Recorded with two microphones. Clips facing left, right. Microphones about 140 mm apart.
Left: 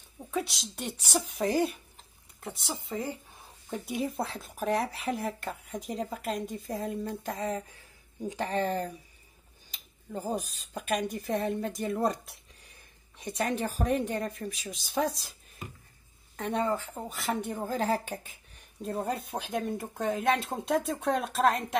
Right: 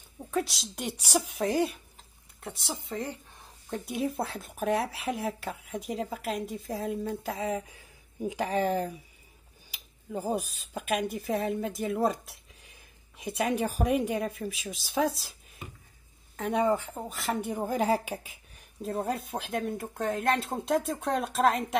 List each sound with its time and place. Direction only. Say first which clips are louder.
0.2 s a woman's voice: right 2 dB; centre (ahead or behind)
0.7 s a woman's voice: right 2 dB; 10° right (ahead or behind)
1.4 s a woman's voice: left 2 dB; centre (ahead or behind)
16.3 s a woman's voice: right 2 dB; 5° right (ahead or behind)
16.6 s a woman's voice: right 4 dB; 15° right (ahead or behind)
16.9 s speech: right 1 dB; centre (ahead or behind)
17.5 s speech: right 4 dB; 15° right (ahead or behind)